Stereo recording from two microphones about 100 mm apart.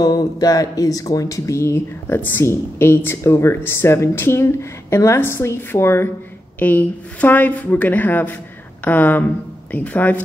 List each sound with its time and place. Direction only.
0.0 s speech: 40° left (ahead or behind); by 10.2 s 15° left (ahead or behind)